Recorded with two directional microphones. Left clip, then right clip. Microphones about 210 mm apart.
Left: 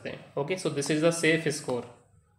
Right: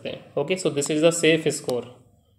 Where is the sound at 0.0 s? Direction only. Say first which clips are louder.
Right 6 dB; 15° right (ahead or behind).